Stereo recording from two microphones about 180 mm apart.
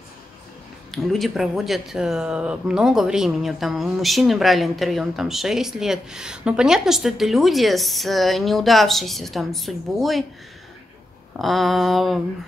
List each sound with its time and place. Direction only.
0.9 s speech: centre (ahead or behind)
11.3 s speech: centre (ahead or behind)